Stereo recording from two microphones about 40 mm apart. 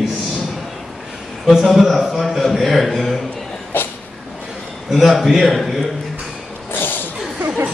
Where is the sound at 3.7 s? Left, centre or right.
Left.